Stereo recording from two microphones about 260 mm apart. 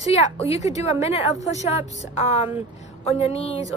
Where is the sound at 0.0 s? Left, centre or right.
Left.